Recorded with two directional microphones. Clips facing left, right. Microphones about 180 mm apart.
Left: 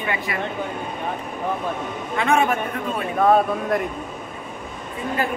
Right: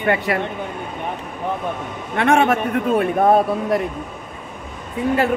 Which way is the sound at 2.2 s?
75° right (ahead or behind).